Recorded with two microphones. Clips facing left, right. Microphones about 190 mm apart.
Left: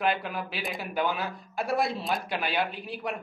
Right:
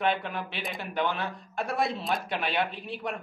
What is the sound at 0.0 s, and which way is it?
Speech, 5° left (ahead or behind).